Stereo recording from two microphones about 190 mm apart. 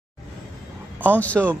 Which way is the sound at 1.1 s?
5° left (ahead or behind).